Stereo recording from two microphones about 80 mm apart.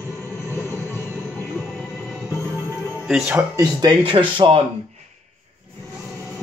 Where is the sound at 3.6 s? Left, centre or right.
Right.